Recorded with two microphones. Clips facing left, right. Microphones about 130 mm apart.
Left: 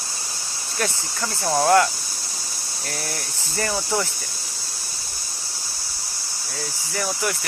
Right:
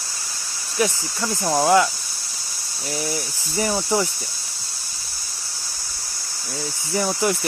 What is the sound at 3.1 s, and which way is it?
Speech, 15° right (ahead or behind).